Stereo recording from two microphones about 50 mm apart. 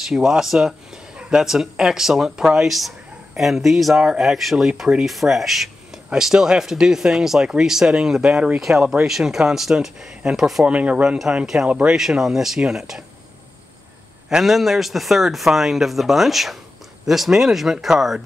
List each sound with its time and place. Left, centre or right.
0.0 s speech: centre
4.6 s speech: centre
5.0 s speech: centre
10.6 s speech: right
11.4 s speech: centre
14.4 s speech: centre